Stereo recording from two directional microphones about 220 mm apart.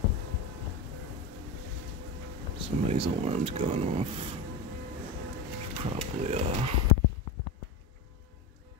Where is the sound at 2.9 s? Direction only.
30° right (ahead or behind).